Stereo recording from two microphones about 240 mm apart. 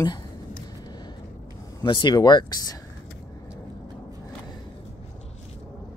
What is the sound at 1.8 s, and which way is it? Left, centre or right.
Speech, centre.